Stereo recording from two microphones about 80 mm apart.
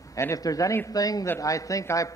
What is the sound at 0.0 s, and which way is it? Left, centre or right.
A man's voice, left.